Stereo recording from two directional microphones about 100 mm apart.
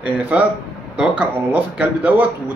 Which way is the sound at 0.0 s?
15° right (ahead or behind).